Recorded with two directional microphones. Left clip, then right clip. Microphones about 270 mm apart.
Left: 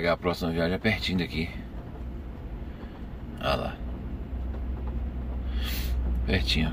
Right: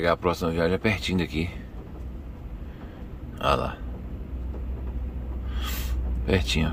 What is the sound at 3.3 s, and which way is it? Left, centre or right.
Speech, centre.